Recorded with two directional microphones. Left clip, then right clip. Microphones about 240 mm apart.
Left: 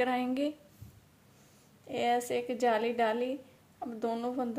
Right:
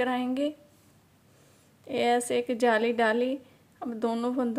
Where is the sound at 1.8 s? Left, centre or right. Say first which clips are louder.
Right 4 dB; centre.